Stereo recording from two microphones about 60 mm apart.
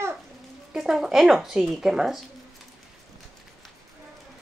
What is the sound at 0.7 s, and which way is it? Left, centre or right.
Speech, centre.